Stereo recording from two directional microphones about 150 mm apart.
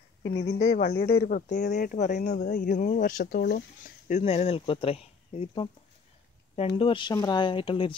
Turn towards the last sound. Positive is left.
turn(degrees=35)  # may be behind; listen again after turning